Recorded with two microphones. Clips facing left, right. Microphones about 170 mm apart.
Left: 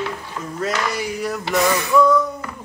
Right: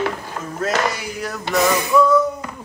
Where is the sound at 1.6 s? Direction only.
20° right (ahead or behind).